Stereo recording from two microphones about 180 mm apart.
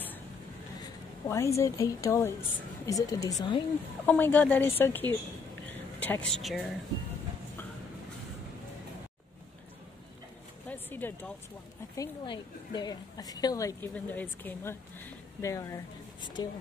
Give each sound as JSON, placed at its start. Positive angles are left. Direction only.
{"t": 1.3, "sound": "a woman's voice", "side_deg": 15}
{"t": 4.0, "sound": "speech", "side_deg": 10}
{"t": 10.7, "sound": "a sound", "side_deg": 10}
{"t": 12.0, "sound": "a woman's voice", "side_deg": 25}